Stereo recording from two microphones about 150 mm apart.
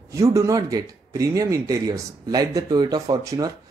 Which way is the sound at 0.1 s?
20° right (ahead or behind).